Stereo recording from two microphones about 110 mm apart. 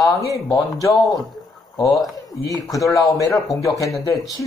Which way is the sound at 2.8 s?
30° left (ahead or behind).